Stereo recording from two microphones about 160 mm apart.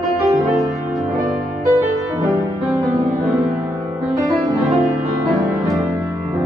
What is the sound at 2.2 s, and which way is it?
Music, centre (ahead or behind).